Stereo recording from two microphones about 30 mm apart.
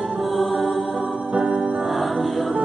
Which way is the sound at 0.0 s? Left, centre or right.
Centre.